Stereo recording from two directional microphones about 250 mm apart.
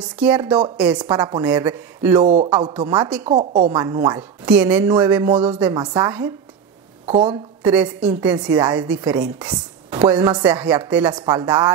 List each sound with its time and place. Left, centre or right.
0.0 s speech: centre
1.1 s a woman's voice: centre
1.4 s a woman's voice: centre
2.2 s a woman's voice: right; by 5.8 s centre
5.8 s a woman's voice: centre
7.6 s a woman's voice: centre